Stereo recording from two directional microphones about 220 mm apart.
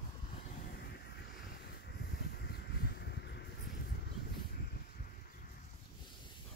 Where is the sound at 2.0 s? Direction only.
45° left (ahead or behind).